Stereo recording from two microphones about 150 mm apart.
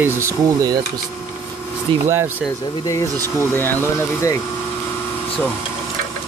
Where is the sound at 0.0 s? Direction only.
20° right (ahead or behind).